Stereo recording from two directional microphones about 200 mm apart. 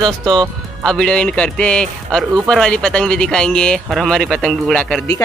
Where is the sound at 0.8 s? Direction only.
5° left (ahead or behind).